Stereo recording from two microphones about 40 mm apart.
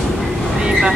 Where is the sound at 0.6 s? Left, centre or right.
Centre.